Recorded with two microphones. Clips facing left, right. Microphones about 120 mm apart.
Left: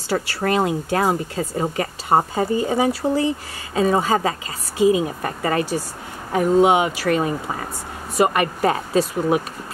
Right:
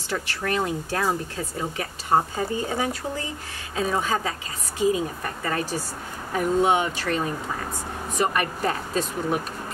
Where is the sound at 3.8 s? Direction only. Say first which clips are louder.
Left 7 dB; 45° left (ahead or behind).